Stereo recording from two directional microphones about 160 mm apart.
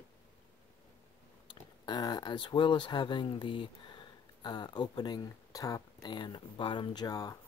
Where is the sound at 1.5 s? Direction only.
25° left (ahead or behind).